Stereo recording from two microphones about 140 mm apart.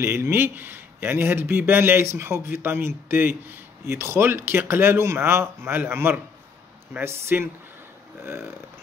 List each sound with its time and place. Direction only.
0.0 s a man's voice: 15° right (ahead or behind)